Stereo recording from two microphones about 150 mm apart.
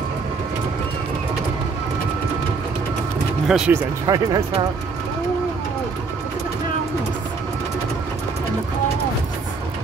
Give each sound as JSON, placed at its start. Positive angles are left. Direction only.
{"t": 3.4, "sound": "speech", "side_deg": -5}
{"t": 4.0, "sound": "speech", "side_deg": -25}